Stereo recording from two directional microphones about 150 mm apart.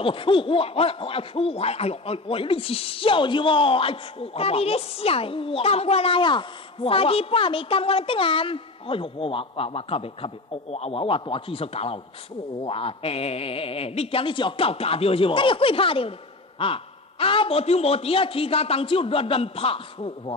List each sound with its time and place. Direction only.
0.0 s speech: 35° left (ahead or behind)